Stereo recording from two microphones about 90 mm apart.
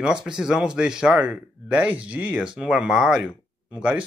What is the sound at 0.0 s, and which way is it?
A man's voice, 10° right (ahead or behind).